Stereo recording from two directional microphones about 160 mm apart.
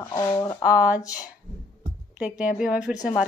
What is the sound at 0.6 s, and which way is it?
Speech, 10° right (ahead or behind).